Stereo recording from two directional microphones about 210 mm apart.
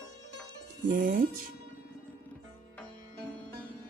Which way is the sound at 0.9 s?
40° right (ahead or behind).